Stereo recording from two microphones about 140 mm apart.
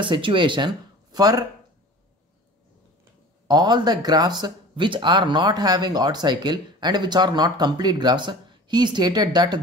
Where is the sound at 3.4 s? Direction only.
30° right (ahead or behind).